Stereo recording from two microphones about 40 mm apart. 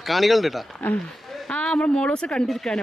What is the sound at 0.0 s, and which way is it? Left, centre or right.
Speech, centre.